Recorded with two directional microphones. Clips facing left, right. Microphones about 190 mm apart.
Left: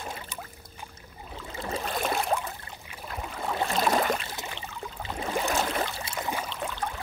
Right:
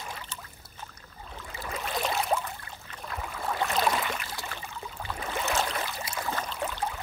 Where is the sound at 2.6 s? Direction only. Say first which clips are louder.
Left 1 dB; 20° left (ahead or behind).